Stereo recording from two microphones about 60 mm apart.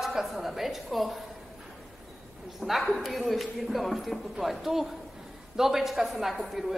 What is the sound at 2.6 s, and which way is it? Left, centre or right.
A woman's voice, centre.